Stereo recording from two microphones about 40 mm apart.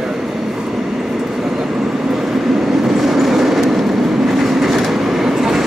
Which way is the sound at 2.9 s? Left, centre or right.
Centre.